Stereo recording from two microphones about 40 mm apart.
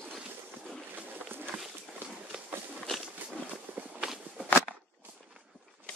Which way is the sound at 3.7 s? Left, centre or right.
Right.